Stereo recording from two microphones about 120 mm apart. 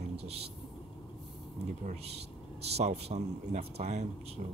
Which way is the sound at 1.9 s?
60° right (ahead or behind).